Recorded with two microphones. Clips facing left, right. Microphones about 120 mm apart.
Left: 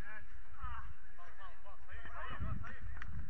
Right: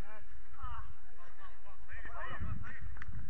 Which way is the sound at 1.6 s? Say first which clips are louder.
Right 1 dB; 15° left (ahead or behind).